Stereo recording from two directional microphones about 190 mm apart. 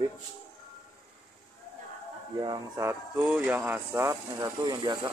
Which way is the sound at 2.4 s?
20° right (ahead or behind).